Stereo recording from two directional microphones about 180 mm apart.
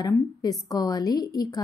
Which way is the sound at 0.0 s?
20° left (ahead or behind).